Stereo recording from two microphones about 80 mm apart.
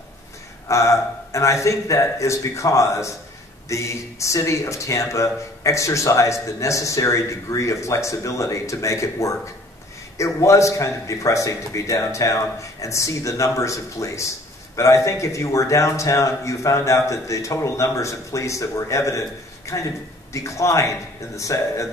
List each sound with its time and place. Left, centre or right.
0.7 s speech: left